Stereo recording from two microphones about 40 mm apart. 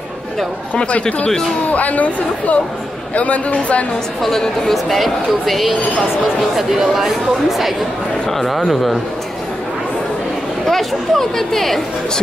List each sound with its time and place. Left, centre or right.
0.7 s speech: left
1.0 s speech: centre
1.7 s speech: left
4.2 s speech: centre
10.7 s speech: centre